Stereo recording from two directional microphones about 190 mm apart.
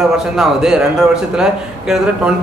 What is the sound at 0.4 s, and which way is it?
A man's voice, 5° right (ahead or behind).